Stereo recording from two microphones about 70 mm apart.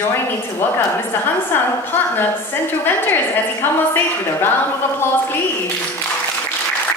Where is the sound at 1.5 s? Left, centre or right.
Left.